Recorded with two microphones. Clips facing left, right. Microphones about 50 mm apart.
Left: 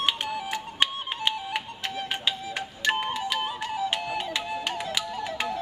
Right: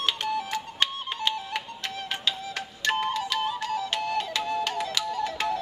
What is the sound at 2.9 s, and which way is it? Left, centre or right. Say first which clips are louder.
Music: even; centre.